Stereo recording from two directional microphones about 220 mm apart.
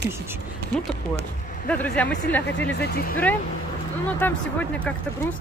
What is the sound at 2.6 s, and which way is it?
Speech, 45° left (ahead or behind).